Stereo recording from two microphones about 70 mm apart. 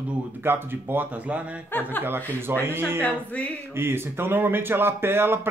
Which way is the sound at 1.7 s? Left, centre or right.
Left.